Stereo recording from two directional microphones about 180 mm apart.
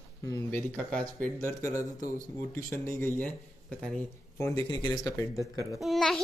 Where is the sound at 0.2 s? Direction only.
15° left (ahead or behind).